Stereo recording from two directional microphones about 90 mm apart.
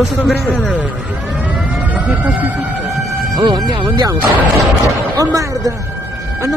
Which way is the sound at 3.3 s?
55° right (ahead or behind).